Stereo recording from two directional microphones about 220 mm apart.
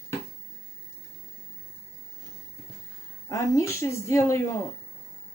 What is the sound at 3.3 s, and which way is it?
A woman's voice, 15° left (ahead or behind).